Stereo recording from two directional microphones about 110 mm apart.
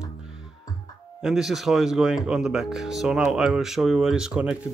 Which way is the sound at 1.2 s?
5° right (ahead or behind).